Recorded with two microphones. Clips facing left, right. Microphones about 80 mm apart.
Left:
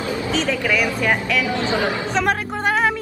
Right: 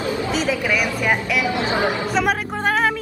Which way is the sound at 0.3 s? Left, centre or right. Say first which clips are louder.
Left 2 dB; centre.